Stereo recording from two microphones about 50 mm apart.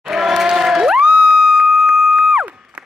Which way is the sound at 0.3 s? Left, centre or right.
Centre.